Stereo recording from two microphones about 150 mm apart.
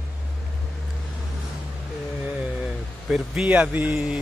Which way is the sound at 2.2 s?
5° right (ahead or behind).